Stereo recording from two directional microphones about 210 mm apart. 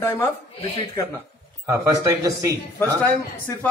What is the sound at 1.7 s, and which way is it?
Speech, 15° right (ahead or behind).